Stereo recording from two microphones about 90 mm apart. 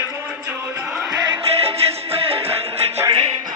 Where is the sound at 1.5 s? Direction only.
90° right.